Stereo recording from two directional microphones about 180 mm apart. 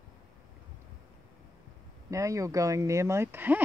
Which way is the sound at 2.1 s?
15° right (ahead or behind).